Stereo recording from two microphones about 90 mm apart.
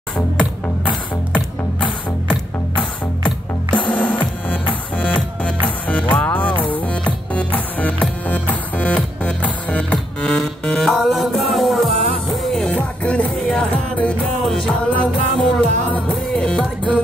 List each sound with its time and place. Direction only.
1.3 s music: 15° left (ahead or behind)
5.9 s music: 15° left (ahead or behind)